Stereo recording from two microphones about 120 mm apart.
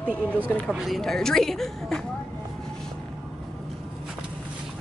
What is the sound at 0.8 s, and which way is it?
Speech, centre (ahead or behind).